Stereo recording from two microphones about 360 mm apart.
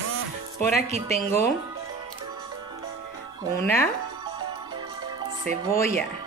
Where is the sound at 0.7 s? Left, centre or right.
Centre.